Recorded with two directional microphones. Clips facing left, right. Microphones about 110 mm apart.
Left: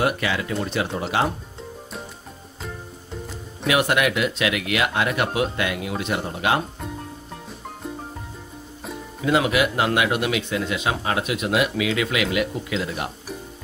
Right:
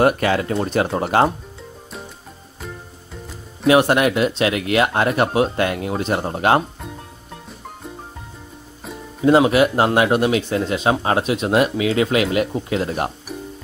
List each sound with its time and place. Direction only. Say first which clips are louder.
0.0 s speech: right 6 dB; 45° right (ahead or behind)
3.6 s a man's voice: right 6 dB; 35° right (ahead or behind)
9.2 s a man's voice: right 6 dB; 35° right (ahead or behind)